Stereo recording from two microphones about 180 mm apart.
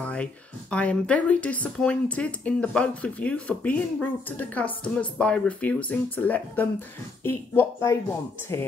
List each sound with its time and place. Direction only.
0.0 s speech: 5° left (ahead or behind)